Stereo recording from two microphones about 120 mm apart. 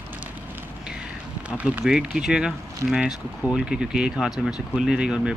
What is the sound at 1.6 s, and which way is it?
Speech, 5° right (ahead or behind).